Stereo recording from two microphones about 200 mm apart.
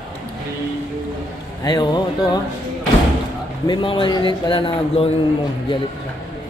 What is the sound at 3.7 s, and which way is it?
Speech, 25° left (ahead or behind).